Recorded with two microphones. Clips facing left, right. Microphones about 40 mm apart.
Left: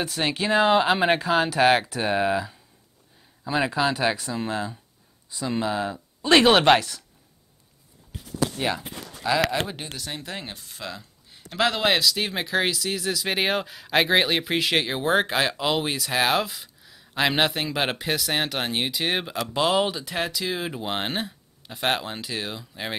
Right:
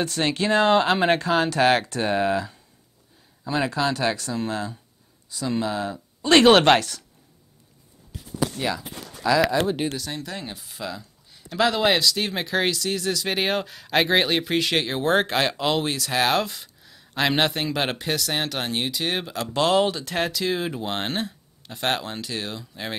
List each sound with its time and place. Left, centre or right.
0.0 s speech: centre
8.5 s speech: left
9.2 s speech: centre
10.5 s speech: centre